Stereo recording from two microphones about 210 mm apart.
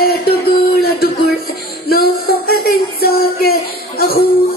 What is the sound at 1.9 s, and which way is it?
Music, 45° left (ahead or behind).